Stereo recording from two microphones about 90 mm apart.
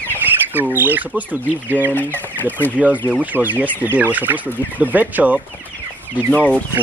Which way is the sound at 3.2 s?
20° right (ahead or behind).